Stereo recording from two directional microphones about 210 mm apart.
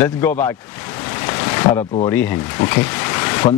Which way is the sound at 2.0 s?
10° left (ahead or behind).